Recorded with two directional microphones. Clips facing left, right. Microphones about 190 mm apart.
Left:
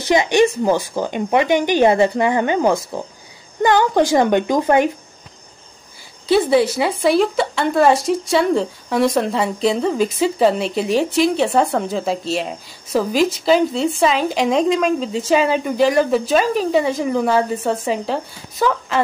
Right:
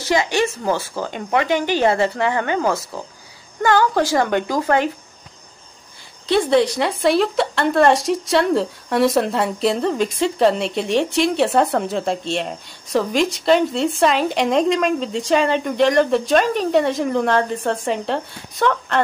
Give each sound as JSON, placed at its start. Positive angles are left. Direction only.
{"t": 0.0, "sound": "a woman's voice", "side_deg": 20}
{"t": 6.2, "sound": "a woman's voice", "side_deg": 5}